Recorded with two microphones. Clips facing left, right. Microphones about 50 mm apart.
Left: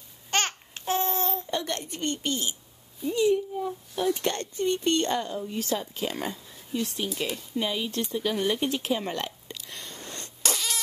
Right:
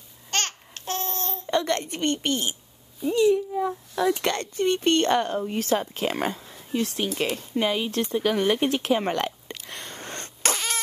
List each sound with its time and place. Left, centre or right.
0.3 s babbling: centre
1.4 s a sound: right
3.1 s a woman's voice: right
4.6 s speech: right